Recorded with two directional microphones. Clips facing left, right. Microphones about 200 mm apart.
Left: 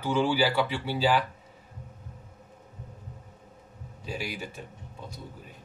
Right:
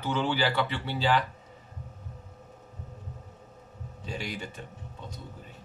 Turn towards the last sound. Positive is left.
turn(degrees=5)  # may be behind; listen again after turning